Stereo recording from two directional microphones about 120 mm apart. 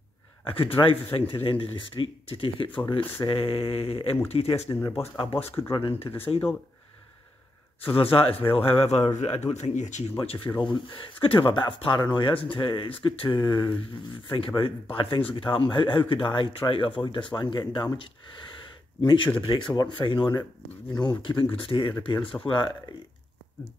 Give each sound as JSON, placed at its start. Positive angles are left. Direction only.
{"t": 0.5, "sound": "speech", "side_deg": 50}
{"t": 4.7, "sound": "speech", "side_deg": 20}
{"t": 5.1, "sound": "speech", "side_deg": 50}
{"t": 7.9, "sound": "speech", "side_deg": 50}
{"t": 9.5, "sound": "speech", "side_deg": 75}
{"t": 10.1, "sound": "speech", "side_deg": 50}